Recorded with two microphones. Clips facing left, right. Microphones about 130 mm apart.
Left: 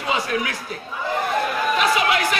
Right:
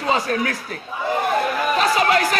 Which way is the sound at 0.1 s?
40° right (ahead or behind).